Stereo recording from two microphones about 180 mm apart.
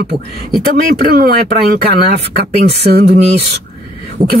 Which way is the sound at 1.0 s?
55° right (ahead or behind).